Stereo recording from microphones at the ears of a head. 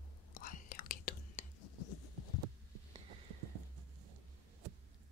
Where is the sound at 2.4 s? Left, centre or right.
Right.